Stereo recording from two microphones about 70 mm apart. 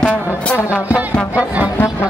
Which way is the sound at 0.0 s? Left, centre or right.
Centre.